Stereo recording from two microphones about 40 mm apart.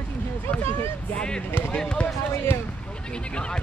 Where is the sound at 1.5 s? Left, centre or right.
Left.